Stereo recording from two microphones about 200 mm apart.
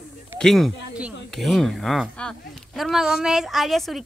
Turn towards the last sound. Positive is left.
turn(degrees=0)  # may be behind; listen again after turning